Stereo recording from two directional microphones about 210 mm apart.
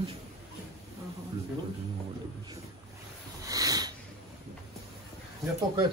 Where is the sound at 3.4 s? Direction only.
15° right (ahead or behind).